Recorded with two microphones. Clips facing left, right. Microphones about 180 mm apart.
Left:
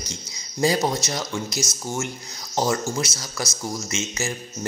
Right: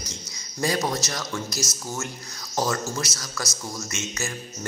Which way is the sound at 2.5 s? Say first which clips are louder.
Left 3 dB; 25° left (ahead or behind).